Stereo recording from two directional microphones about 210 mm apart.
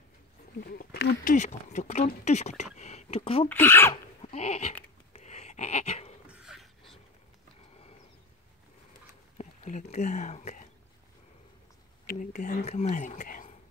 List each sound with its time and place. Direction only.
0.6 s speech: 45° left (ahead or behind); by 3.4 s 25° left (ahead or behind)
3.4 s speech: 10° left (ahead or behind)
3.9 s dog: 30° left (ahead or behind)
5.1 s a sound: 30° left (ahead or behind)
6.3 s a sound: centre (ahead or behind)
9.4 s speech: 35° left (ahead or behind)
12.1 s speech: 35° left (ahead or behind)